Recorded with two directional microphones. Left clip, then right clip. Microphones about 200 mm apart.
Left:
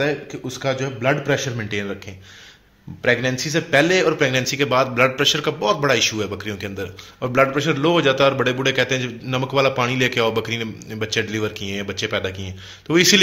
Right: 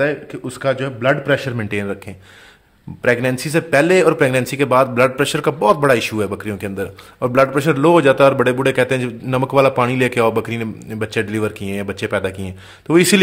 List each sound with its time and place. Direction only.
0.0 s a man's voice: 30° right (ahead or behind)
3.0 s a man's voice: 40° right (ahead or behind)